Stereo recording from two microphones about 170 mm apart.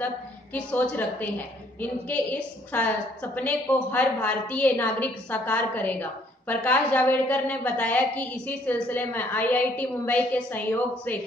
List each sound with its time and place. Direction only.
0.0 s a woman's voice: 10° left (ahead or behind)